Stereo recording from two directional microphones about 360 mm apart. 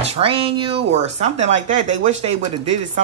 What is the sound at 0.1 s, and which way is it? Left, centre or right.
Speech, centre.